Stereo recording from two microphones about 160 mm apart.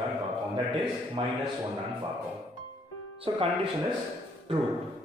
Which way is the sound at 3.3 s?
35° right (ahead or behind).